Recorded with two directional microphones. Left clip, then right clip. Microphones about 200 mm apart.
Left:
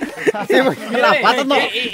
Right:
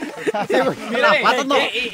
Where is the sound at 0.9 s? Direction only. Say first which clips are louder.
Left 2 dB; 25° left (ahead or behind).